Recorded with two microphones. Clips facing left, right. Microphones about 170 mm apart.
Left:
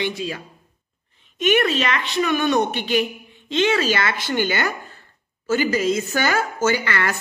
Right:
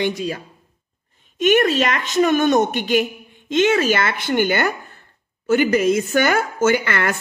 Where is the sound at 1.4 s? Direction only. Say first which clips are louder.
Right 3 dB; 45° right (ahead or behind).